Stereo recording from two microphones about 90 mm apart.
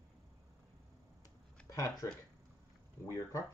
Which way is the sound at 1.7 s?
40° left (ahead or behind).